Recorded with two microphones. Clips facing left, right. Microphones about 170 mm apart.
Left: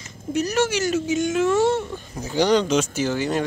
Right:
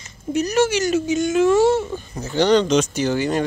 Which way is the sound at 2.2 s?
10° left (ahead or behind).